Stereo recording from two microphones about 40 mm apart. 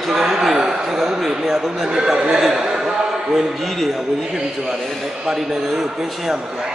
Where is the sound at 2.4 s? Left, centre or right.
Centre.